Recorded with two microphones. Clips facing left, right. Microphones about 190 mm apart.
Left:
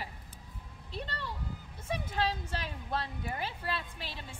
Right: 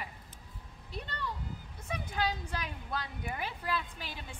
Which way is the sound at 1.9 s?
30° left (ahead or behind).